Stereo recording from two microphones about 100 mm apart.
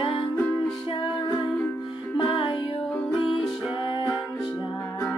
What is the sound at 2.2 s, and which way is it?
Music, 60° left (ahead or behind).